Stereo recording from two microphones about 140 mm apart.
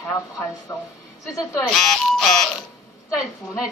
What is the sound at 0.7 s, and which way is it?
Speech, 25° left (ahead or behind).